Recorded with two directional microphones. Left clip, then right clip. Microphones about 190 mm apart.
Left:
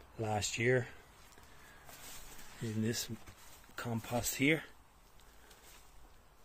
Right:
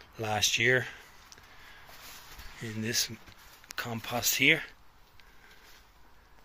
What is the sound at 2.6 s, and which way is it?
Speech, 20° left (ahead or behind).